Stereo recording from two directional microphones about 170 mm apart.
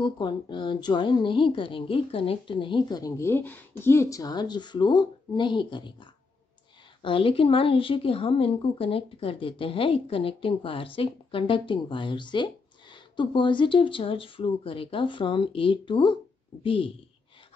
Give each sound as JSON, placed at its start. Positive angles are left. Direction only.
{"t": 0.0, "sound": "a woman's voice", "side_deg": 25}
{"t": 7.0, "sound": "speech", "side_deg": 30}